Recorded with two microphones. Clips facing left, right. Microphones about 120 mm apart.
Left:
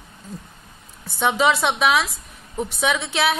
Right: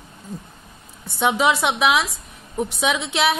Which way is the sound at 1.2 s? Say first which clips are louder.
Even; 10° right (ahead or behind).